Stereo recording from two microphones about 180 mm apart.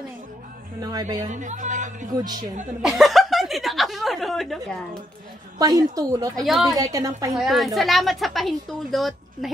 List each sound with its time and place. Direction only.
0.7 s a woman's voice: 20° right (ahead or behind)
1.3 s speech: 45° right (ahead or behind)
2.1 s a woman's voice: 20° right (ahead or behind)
2.8 s speech: centre (ahead or behind)
5.6 s a woman's voice: 20° right (ahead or behind)
6.3 s speech: centre (ahead or behind)
6.7 s a woman's voice: 20° right (ahead or behind)
7.3 s speech: centre (ahead or behind)